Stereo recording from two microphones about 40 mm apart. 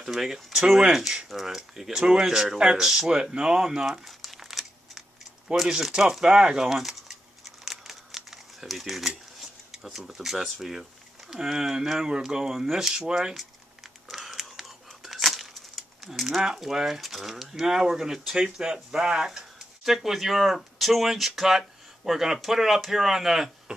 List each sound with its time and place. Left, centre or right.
0.0 s speech: centre
1.9 s speech: centre
4.2 s crumpling: centre
5.7 s speech: centre
6.7 s speech: centre
7.6 s crumpling: centre
11.3 s speech: centre
14.1 s whispering: centre
16.3 s speech: centre
19.2 s speech: centre